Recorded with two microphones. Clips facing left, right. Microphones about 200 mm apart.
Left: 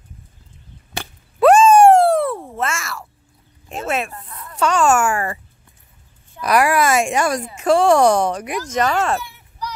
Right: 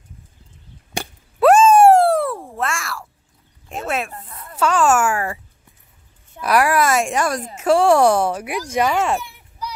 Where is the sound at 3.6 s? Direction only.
Centre (ahead or behind).